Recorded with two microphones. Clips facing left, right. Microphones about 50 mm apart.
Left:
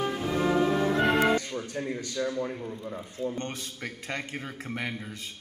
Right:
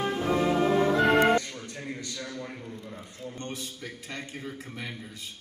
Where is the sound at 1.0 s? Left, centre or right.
Right.